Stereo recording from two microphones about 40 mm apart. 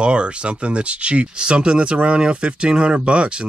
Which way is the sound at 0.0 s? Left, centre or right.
Right.